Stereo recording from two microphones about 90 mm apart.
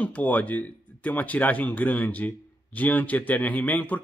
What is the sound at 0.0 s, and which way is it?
A man's voice, 20° left (ahead or behind).